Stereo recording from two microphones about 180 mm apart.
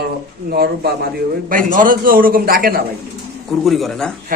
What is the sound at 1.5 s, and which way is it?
A man's voice, 50° right (ahead or behind).